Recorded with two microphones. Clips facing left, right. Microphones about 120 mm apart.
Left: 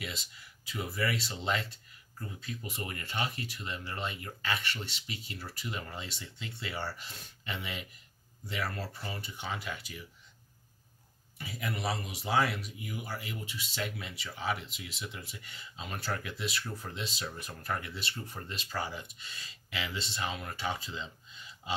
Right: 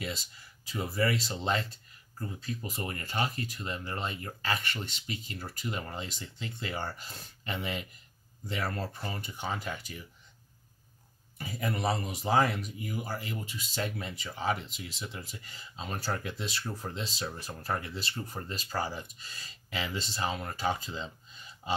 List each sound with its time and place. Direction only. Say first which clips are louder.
0.0 s speech: right 4 dB; 40° right (ahead or behind)
11.3 s speech: right 4 dB; 40° right (ahead or behind)